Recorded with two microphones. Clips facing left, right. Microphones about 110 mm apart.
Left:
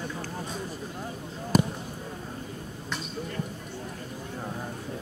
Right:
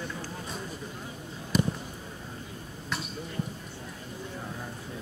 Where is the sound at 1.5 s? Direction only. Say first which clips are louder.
Left 4 dB; 45° left (ahead or behind).